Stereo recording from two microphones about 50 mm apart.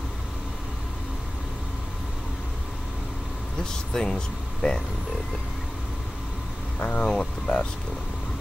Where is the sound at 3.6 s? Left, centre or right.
Centre.